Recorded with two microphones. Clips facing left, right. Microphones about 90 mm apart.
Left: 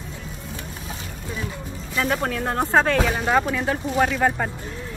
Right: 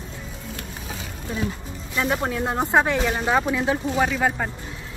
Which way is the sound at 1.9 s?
10° right (ahead or behind).